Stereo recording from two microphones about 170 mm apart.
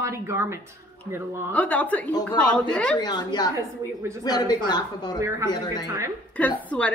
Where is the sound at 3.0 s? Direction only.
25° left (ahead or behind).